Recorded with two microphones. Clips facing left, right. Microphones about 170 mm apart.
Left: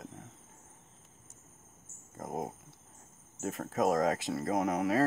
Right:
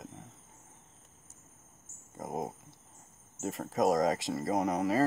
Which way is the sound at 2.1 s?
Centre (ahead or behind).